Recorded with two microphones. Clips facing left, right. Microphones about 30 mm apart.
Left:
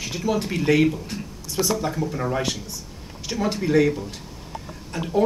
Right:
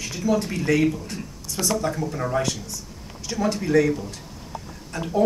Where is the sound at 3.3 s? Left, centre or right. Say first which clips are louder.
Even; left.